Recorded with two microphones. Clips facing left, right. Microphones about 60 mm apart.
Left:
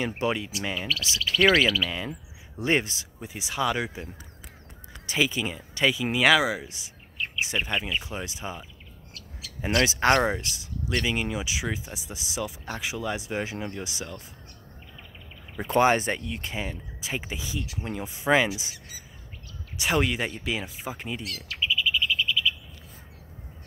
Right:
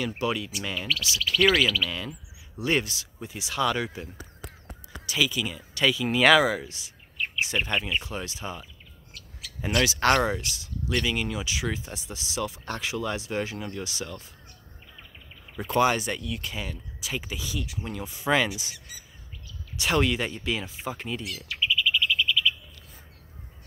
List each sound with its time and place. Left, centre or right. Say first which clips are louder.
0.2 s speech: left 1 dB; left
5.0 s speech: left 1 dB; left
6.1 s speech: right 3 dB; centre; by 14.2 s left
15.5 s speech: left 2 dB; left
19.8 s speech: right 1 dB; centre